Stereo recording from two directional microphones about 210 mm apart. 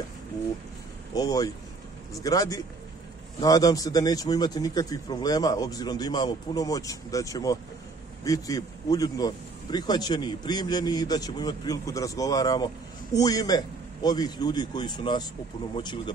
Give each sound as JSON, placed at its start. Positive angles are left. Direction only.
{"t": 1.1, "sound": "a man's voice", "side_deg": 15}